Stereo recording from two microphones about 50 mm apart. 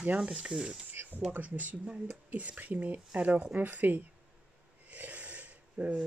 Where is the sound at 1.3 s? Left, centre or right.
Right.